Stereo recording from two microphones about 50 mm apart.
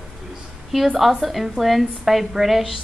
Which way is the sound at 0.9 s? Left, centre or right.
Centre.